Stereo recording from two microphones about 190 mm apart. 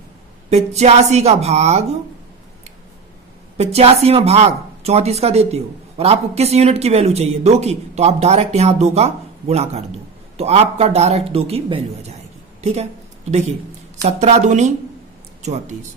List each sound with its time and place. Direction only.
0.5 s speech: 35° right (ahead or behind)
3.5 s speech: 35° right (ahead or behind)
13.3 s speech: 35° right (ahead or behind)